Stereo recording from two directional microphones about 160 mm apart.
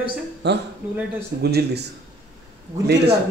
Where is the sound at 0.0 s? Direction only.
90° right.